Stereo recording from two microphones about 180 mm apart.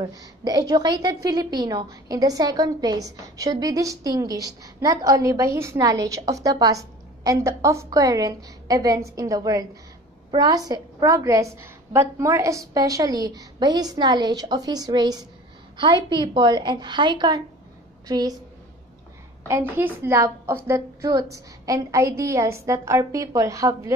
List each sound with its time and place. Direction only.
0.0 s a woman's voice: 20° right (ahead or behind)
19.4 s a woman's voice: 15° right (ahead or behind)